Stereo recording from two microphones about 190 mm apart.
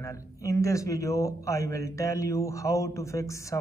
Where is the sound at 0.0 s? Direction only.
15° left (ahead or behind).